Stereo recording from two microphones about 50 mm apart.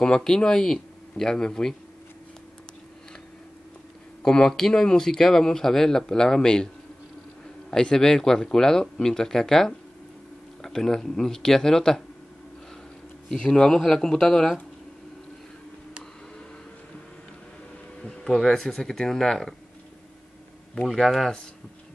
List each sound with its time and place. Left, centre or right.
0.0 s speech: centre
4.2 s speech: centre
7.7 s speech: centre
13.3 s speech: centre
18.0 s a sound: centre
18.5 s speech: centre
20.7 s speech: centre